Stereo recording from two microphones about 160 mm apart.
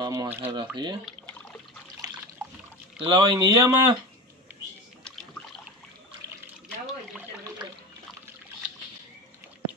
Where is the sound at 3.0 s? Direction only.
30° right (ahead or behind).